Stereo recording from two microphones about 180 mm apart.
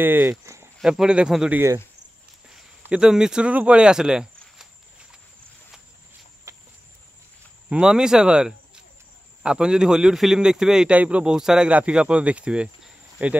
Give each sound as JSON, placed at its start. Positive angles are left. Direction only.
{"t": 0.0, "sound": "speech", "side_deg": -10}
{"t": 6.5, "sound": "a sound", "side_deg": -15}
{"t": 7.7, "sound": "speech", "side_deg": -5}